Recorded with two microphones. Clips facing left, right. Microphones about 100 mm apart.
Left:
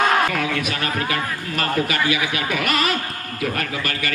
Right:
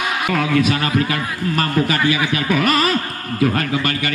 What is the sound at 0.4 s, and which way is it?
A man's voice, 30° right (ahead or behind).